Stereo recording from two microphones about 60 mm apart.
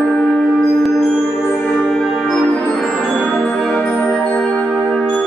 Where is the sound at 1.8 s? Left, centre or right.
Centre.